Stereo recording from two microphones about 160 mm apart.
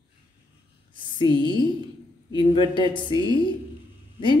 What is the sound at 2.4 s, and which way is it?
A woman's voice, 30° left (ahead or behind).